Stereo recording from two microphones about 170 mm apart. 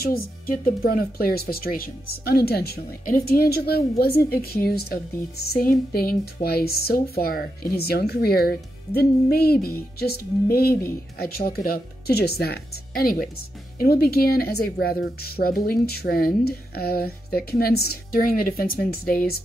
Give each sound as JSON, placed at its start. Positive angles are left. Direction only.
{"t": 0.0, "sound": "a woman's voice", "side_deg": 60}